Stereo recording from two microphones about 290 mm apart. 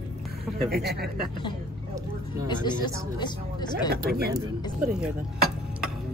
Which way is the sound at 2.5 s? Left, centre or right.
Centre.